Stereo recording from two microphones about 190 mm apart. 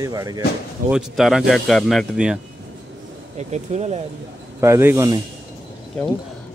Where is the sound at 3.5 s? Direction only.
35° right (ahead or behind).